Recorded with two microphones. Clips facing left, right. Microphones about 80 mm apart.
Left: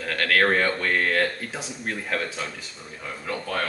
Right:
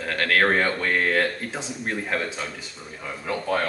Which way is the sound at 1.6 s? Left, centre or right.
Right.